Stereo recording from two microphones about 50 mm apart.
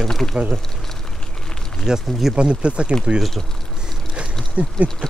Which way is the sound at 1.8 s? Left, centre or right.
Centre.